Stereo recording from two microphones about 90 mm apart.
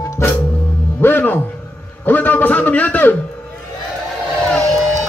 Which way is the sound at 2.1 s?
20° left (ahead or behind).